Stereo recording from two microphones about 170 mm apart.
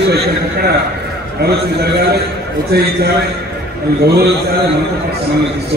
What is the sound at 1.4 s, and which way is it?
Speech, 70° right (ahead or behind).